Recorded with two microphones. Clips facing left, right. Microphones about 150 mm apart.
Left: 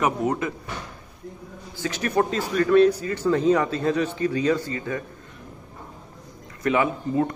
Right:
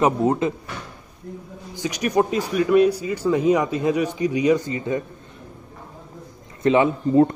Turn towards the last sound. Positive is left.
turn(degrees=-25)  # may be behind; listen again after turning